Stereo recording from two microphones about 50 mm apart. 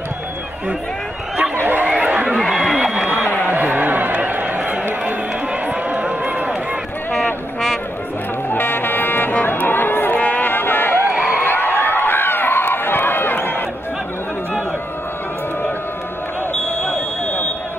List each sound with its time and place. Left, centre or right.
1.6 s chatter: right
2.3 s a sound: centre
3.4 s a sound: right
5.0 s run: right
8.5 s music: left
9.5 s a sound: left
10.2 s music: left
10.5 s music: left
11.4 s run: left